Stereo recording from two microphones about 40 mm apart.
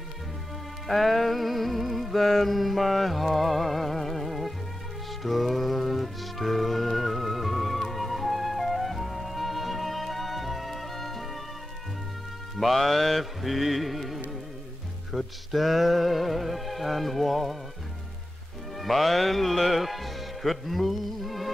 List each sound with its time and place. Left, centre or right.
0.8 s music: centre
12.5 s music: centre
18.8 s speech: centre